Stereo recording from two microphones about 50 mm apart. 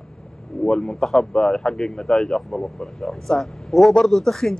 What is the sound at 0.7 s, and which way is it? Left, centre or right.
A man's voice, centre.